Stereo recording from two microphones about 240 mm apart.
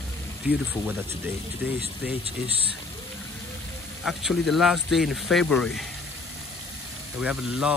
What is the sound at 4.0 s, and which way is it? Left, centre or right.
Speech, centre.